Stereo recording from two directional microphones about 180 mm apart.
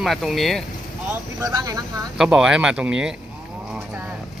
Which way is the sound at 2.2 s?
5° right (ahead or behind).